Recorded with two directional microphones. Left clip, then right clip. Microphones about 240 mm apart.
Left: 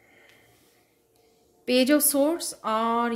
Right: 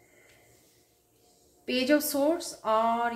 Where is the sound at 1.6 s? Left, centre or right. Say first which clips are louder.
Left 4 dB; left.